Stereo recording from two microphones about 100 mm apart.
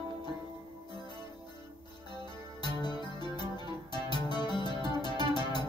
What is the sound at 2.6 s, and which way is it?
Music, 45° left (ahead or behind).